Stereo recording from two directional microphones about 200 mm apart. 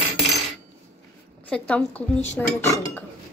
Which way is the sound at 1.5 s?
5° left (ahead or behind).